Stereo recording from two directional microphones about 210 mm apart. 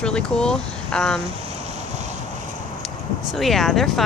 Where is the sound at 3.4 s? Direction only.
Centre (ahead or behind).